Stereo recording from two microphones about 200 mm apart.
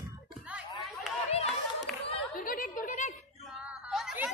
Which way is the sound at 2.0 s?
45° left (ahead or behind).